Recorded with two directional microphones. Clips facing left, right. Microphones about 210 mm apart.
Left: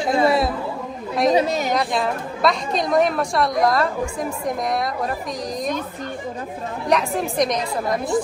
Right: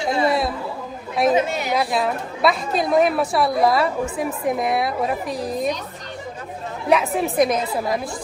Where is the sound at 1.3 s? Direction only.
40° left (ahead or behind).